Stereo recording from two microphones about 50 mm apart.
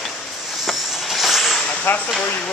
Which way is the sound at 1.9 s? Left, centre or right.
Left.